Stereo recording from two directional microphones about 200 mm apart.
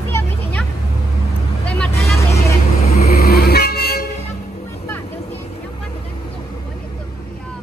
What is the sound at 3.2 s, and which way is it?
Vehicle, 55° left (ahead or behind).